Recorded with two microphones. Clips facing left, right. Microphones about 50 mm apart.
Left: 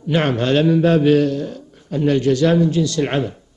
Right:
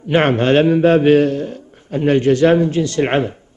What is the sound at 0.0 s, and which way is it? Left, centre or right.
A man's voice, right.